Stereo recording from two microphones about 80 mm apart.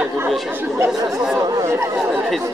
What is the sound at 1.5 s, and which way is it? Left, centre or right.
Speech, right.